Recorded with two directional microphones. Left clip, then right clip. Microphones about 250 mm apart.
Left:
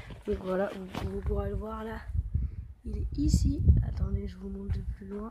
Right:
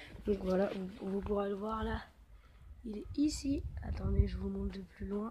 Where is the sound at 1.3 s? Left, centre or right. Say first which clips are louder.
Right 2 dB; right.